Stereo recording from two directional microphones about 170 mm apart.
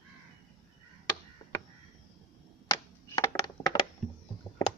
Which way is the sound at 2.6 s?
20° left (ahead or behind).